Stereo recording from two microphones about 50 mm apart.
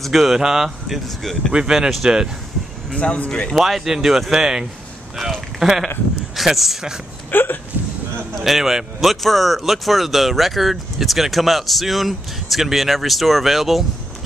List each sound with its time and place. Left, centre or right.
0.0 s speech: centre
3.0 s speech: left
3.5 s speech: centre
7.2 s hiccup: left
8.4 s speech: centre